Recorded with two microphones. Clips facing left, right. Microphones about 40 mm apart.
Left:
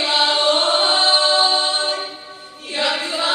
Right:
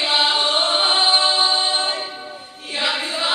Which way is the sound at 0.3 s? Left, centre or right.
Centre.